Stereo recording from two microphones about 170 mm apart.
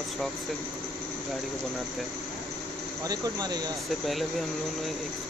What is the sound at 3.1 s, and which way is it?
Speech, 25° right (ahead or behind).